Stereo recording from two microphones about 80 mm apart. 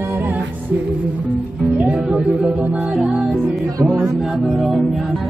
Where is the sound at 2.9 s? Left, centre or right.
Centre.